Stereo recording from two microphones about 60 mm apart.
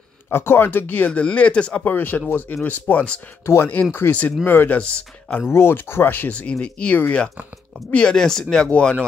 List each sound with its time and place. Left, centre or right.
0.3 s speech: left; by 1.8 s centre
1.9 s speech: left
3.4 s speech: left
6.6 s speech: left